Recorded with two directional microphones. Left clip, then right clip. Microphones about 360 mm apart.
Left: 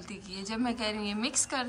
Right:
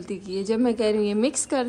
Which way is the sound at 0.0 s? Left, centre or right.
Centre.